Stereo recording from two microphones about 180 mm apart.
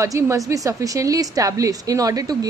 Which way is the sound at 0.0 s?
15° right (ahead or behind).